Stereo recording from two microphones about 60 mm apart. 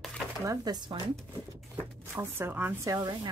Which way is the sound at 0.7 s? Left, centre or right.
Right.